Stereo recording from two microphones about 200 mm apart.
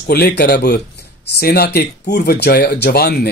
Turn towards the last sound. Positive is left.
turn(degrees=50)  # may be behind; listen again after turning